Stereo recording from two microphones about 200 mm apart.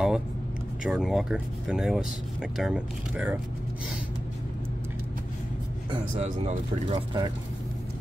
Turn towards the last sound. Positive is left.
turn(degrees=-25)  # may be behind; listen again after turning